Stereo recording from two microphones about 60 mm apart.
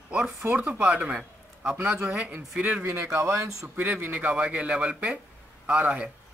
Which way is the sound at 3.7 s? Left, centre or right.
Right.